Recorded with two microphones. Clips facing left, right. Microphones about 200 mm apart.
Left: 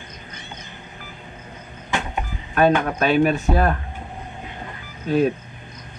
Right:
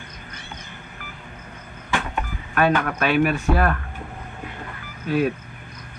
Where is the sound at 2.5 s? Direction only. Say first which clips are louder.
Left 3 dB; 25° left (ahead or behind).